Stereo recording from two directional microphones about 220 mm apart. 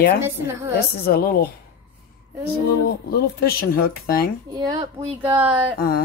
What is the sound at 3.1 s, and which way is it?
A woman's voice, 45° left (ahead or behind).